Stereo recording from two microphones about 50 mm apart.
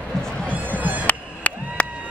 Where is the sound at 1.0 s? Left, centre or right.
Left.